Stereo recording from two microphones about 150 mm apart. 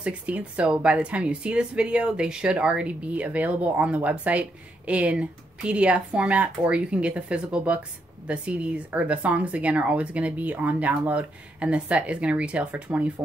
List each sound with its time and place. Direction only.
0.0 s a woman's voice: 10° right (ahead or behind)